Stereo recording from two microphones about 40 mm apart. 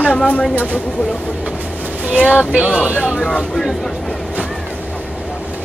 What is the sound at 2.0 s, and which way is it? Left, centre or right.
Speech, right.